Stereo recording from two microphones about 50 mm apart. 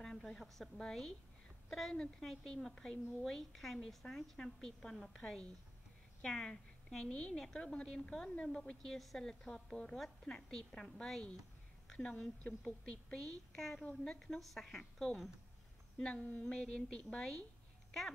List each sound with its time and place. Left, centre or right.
0.0 s a woman's voice: centre
16.2 s a sound: left
16.4 s a woman's voice: centre